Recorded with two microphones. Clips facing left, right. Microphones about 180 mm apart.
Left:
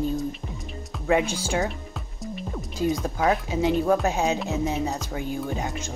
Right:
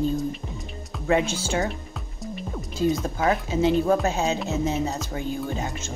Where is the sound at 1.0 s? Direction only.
15° left (ahead or behind).